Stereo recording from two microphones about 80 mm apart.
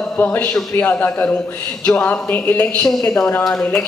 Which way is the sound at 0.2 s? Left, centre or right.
Left.